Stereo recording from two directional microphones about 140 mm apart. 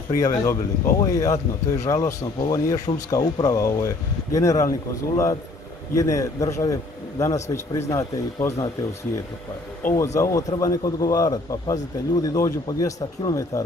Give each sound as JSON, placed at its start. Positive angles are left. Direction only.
{"t": 0.2, "sound": "speech", "side_deg": 25}
{"t": 9.9, "sound": "speech", "side_deg": 20}